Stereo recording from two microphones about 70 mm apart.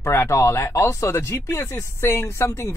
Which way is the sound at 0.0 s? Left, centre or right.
Left.